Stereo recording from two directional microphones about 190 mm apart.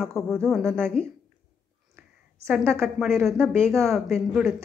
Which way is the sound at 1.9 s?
15° right (ahead or behind).